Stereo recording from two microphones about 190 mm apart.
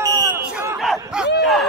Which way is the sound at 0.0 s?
10° right (ahead or behind).